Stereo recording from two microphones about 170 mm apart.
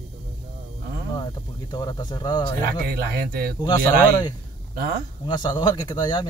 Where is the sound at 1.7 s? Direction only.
25° left (ahead or behind).